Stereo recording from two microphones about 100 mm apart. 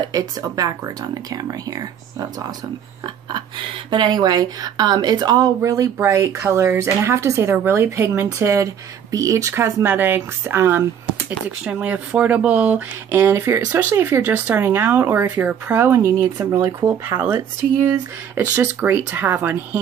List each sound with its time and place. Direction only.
0.0 s speech: 40° right (ahead or behind)
3.9 s speech: 45° right (ahead or behind)
5.6 s speech: 30° right (ahead or behind)
11.2 s speech: 10° right (ahead or behind)
13.2 s speech: 25° right (ahead or behind)